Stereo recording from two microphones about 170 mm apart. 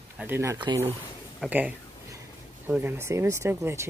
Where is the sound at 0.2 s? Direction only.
15° right (ahead or behind).